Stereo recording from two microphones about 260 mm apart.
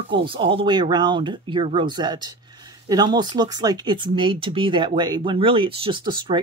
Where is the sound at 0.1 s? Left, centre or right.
Centre.